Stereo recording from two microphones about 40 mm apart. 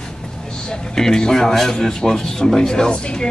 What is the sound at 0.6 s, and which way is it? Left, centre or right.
A man's voice, centre.